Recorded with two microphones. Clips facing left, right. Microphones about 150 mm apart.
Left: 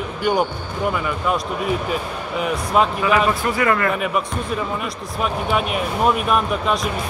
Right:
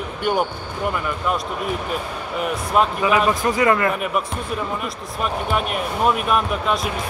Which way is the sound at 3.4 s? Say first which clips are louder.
Right 1 dB; 20° right (ahead or behind).